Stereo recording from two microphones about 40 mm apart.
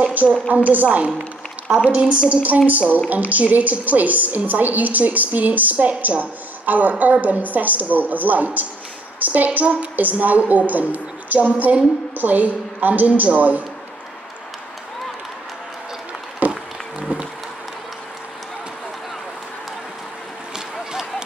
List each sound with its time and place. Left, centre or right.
0.0 s a sound: right
0.5 s a woman's voice: right
2.2 s a woman's voice: right
16.4 s run: right